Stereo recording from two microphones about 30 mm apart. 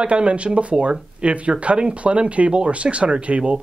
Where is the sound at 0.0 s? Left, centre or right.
Right.